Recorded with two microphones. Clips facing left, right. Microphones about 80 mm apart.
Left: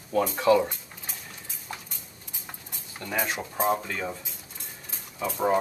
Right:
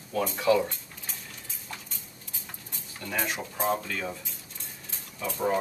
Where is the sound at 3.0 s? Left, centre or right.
Centre.